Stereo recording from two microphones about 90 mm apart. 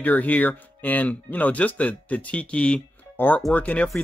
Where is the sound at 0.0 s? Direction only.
20° left (ahead or behind).